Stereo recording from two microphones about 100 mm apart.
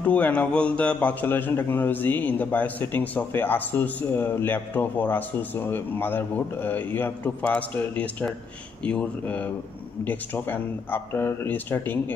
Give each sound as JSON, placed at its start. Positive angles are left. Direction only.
{"t": 0.0, "sound": "a man's voice", "side_deg": 15}